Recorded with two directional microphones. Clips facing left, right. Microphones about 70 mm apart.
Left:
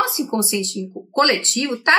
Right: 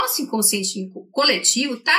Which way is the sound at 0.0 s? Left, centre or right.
Left.